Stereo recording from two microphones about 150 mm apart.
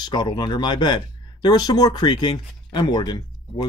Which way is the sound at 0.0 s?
30° left (ahead or behind).